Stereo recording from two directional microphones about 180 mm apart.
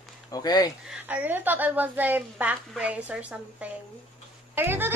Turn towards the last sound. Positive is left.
turn(degrees=-10)  # may be behind; listen again after turning